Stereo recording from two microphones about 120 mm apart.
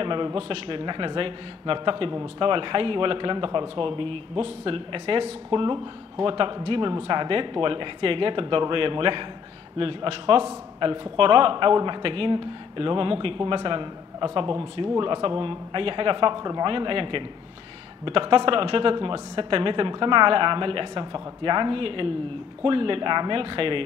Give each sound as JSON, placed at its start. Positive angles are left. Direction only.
{"t": 0.0, "sound": "speech", "side_deg": -45}